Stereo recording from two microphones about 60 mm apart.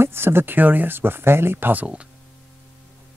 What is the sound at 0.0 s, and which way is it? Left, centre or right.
Speech, right.